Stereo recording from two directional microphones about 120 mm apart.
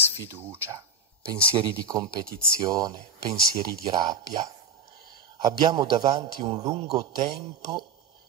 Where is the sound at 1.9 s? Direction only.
30° right (ahead or behind).